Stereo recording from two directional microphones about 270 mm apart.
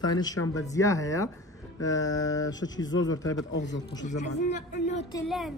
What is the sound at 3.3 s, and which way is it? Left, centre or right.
Speech, left.